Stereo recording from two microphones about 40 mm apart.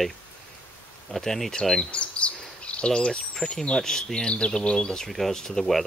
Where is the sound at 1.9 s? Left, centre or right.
Left.